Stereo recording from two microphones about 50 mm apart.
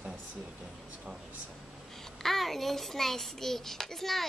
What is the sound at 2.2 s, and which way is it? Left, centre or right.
A child's voice, centre.